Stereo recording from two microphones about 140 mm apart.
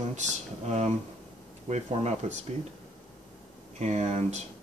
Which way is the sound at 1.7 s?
55° right (ahead or behind).